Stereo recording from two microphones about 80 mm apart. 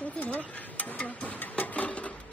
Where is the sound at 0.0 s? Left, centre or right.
Centre.